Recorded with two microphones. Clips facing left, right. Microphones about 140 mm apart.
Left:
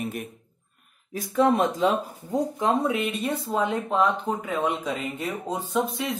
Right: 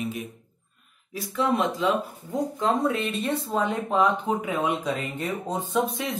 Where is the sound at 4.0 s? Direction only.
10° right (ahead or behind).